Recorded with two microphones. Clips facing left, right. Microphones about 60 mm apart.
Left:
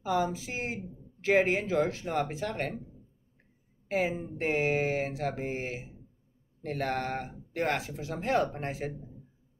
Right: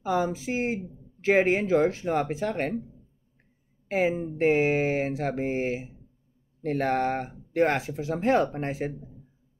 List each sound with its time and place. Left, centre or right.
0.0 s speech: right
4.4 s speech: right